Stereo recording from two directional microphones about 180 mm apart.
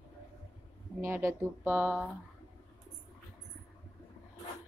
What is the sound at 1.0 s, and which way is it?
Speech, 15° right (ahead or behind).